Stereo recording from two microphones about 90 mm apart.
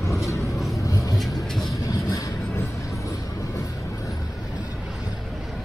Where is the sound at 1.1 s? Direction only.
5° left (ahead or behind).